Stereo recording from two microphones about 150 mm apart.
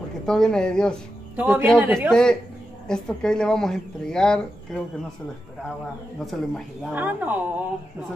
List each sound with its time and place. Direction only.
0.2 s speech: 5° left (ahead or behind)
1.3 s a man's voice: 10° right (ahead or behind)
2.0 s speech: 5° left (ahead or behind)
6.1 s speech: centre (ahead or behind)
6.9 s speech: 10° right (ahead or behind)